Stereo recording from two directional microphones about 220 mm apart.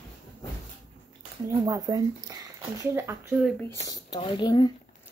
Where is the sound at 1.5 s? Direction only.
15° right (ahead or behind).